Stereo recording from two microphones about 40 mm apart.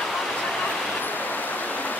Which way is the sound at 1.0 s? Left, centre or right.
Left.